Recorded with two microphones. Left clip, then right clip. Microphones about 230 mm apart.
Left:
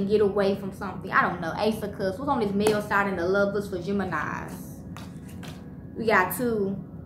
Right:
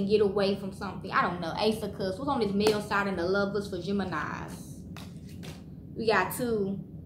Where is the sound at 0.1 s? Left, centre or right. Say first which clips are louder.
Left 3 dB; centre.